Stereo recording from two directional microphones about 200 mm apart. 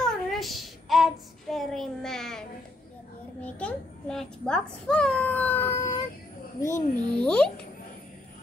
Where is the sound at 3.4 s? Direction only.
5° left (ahead or behind).